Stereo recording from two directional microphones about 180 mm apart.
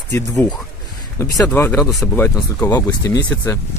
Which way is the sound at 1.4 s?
10° left (ahead or behind).